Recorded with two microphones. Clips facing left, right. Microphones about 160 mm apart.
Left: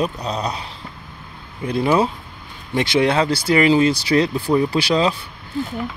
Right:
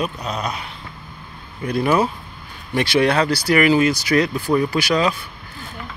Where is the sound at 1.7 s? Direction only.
25° left (ahead or behind).